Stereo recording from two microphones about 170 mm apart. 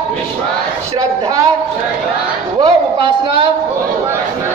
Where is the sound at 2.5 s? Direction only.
30° right (ahead or behind).